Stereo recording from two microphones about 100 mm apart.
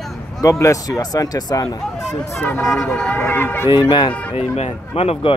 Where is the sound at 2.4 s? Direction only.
20° left (ahead or behind).